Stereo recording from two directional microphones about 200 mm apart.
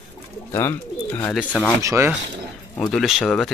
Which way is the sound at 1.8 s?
15° right (ahead or behind).